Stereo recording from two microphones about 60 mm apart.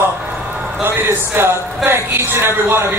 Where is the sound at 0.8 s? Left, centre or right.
Right.